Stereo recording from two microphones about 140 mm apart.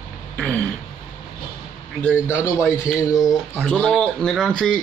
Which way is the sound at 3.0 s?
25° left (ahead or behind).